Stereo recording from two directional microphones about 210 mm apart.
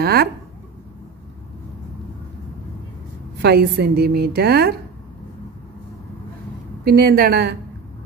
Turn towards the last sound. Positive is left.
turn(degrees=-50)  # may be behind; listen again after turning